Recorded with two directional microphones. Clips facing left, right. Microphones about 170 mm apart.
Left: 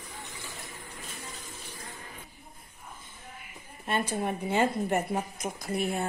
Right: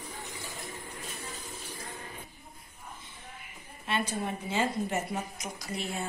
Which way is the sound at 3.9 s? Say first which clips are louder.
Left 2 dB; 55° left (ahead or behind).